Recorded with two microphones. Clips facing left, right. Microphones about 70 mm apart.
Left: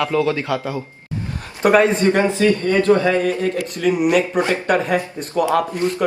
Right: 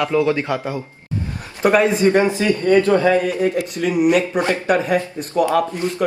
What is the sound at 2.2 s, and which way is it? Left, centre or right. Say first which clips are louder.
Speech: even; right.